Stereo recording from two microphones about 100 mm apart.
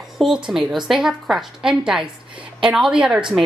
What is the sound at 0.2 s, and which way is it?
A woman's voice, 5° right (ahead or behind).